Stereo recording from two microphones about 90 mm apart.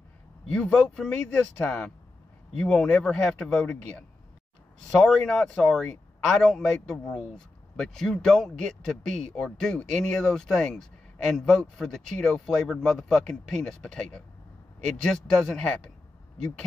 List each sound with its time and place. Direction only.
0.5 s speech: 15° left (ahead or behind)
5.0 s speech: 10° left (ahead or behind)